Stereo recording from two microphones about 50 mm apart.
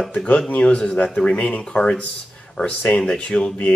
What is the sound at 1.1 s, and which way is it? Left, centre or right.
Speech, centre.